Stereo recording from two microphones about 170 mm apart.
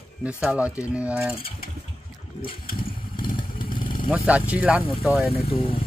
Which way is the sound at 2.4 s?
30° left (ahead or behind).